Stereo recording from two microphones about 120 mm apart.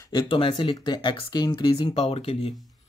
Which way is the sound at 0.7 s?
35° left (ahead or behind).